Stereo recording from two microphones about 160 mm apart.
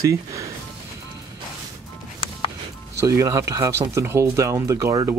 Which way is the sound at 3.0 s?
20° right (ahead or behind).